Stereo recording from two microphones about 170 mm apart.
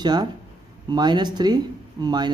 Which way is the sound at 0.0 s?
25° right (ahead or behind).